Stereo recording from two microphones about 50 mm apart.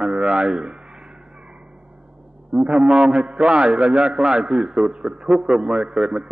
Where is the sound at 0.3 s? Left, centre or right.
Centre.